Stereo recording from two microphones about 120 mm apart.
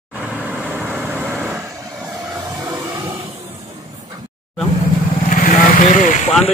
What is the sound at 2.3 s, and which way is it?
Train, 20° right (ahead or behind).